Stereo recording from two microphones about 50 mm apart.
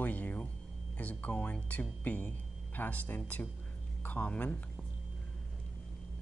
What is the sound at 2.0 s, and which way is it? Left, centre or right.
Speech, left.